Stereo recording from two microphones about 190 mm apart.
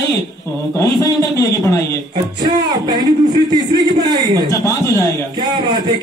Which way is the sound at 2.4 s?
20° right (ahead or behind).